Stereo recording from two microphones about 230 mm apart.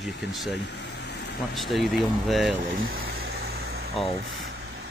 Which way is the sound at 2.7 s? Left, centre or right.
Right.